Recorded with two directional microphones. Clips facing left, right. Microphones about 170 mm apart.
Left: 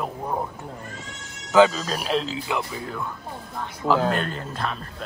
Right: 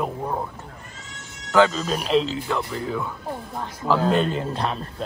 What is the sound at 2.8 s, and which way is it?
Speech, centre (ahead or behind).